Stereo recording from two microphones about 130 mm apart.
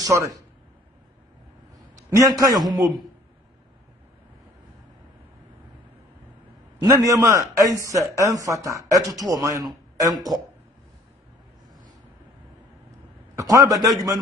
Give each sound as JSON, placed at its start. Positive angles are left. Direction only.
{"t": 0.0, "sound": "speech", "side_deg": -25}
{"t": 2.0, "sound": "a man's voice", "side_deg": -25}
{"t": 2.6, "sound": "speech", "side_deg": 0}
{"t": 6.8, "sound": "speech", "side_deg": -25}
{"t": 13.4, "sound": "speech", "side_deg": -25}